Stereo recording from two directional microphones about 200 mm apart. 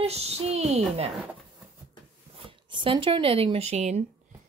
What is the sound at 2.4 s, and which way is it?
Speech, 25° right (ahead or behind).